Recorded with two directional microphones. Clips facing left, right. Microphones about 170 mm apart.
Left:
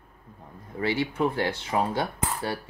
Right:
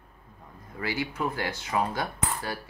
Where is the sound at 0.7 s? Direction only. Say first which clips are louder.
Left 5 dB; 30° left (ahead or behind).